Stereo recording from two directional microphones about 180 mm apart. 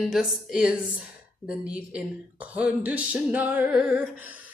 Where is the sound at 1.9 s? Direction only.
5° right (ahead or behind).